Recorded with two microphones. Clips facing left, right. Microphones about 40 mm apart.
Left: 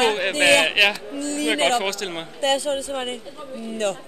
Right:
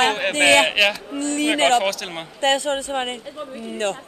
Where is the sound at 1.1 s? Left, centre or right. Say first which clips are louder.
Right 3 dB; right.